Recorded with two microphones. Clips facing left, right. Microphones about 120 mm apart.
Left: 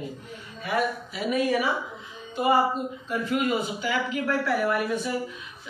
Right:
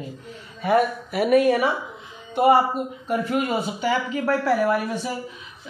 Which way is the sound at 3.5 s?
35° right (ahead or behind).